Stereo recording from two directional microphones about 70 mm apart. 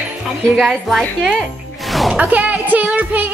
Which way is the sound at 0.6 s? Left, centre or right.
Centre.